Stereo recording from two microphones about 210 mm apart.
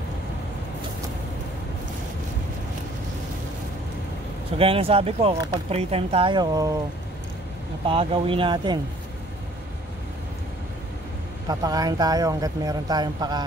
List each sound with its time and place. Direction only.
4.6 s speech: 25° right (ahead or behind)
7.8 s speech: 25° right (ahead or behind)
11.4 s speech: 20° right (ahead or behind)